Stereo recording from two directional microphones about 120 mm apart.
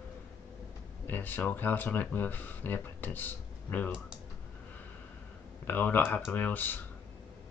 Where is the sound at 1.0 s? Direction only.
15° left (ahead or behind).